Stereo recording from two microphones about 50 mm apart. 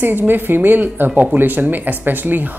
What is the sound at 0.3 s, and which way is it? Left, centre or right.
A woman's voice, right.